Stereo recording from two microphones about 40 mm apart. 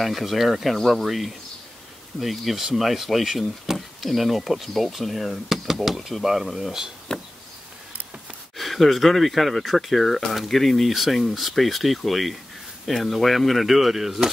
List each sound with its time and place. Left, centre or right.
0.0 s speech: centre
0.7 s speech: centre
1.0 s speech: centre
7.1 s a sound: left
8.5 s speech: centre